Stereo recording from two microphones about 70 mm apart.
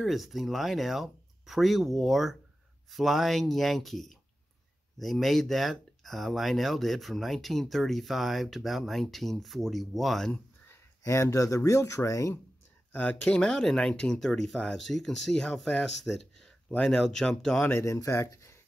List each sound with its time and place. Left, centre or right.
0.0 s speech: centre
11.1 s speech: left
12.9 s speech: left
17.6 s speech: left